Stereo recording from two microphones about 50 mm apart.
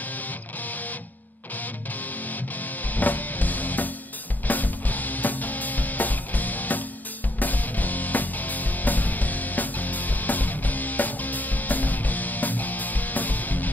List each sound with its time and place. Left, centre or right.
2.9 s music: left